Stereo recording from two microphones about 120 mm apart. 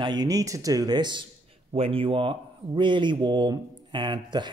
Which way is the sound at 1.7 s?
50° right (ahead or behind).